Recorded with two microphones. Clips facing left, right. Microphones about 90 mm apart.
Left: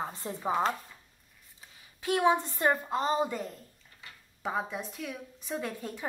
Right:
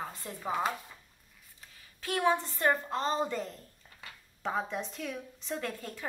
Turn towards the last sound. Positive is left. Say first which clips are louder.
# left 2 dB
turn(degrees=15)  # may be behind; listen again after turning